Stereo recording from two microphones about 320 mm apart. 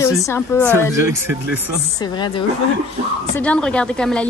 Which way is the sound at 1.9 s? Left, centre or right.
Centre.